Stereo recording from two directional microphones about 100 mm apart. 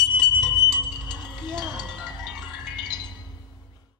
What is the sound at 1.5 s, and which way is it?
Music, 5° left (ahead or behind).